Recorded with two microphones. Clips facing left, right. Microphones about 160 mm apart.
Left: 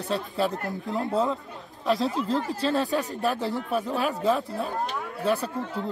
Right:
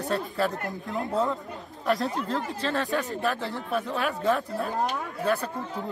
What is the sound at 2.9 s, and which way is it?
Speech, 40° left (ahead or behind).